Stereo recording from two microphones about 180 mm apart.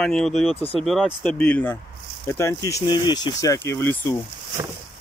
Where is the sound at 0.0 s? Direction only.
5° left (ahead or behind).